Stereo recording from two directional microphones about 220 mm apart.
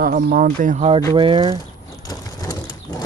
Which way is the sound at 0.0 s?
40° right (ahead or behind).